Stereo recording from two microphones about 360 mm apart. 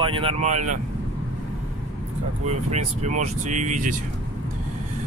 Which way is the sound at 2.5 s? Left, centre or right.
Centre.